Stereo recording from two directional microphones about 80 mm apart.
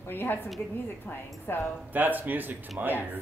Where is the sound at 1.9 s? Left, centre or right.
Right.